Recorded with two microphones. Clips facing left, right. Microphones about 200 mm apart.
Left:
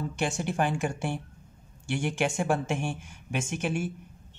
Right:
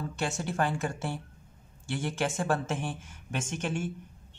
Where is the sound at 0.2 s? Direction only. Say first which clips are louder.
Left 2 dB; 15° left (ahead or behind).